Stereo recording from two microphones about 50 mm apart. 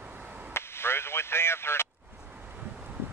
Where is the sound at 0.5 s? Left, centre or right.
Left.